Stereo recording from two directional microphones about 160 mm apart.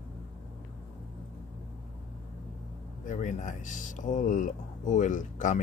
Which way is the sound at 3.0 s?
50° left (ahead or behind).